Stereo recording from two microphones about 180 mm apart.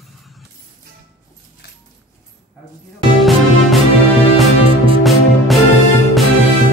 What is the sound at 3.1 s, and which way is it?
Music, centre (ahead or behind).